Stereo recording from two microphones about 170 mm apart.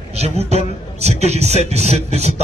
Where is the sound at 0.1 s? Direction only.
40° right (ahead or behind).